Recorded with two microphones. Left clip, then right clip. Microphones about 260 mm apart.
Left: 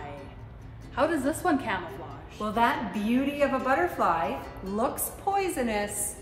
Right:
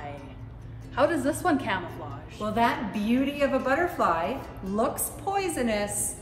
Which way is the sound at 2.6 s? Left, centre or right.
Centre.